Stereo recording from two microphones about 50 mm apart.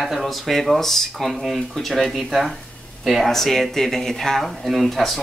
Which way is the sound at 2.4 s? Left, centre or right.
Centre.